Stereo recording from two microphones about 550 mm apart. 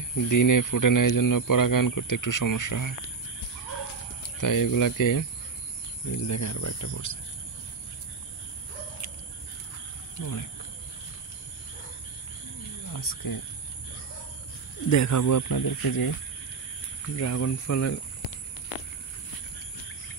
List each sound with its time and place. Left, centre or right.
0.1 s speech: left
4.4 s speech: left
10.1 s speech: left
12.9 s speech: left
14.9 s speech: left
17.1 s speech: left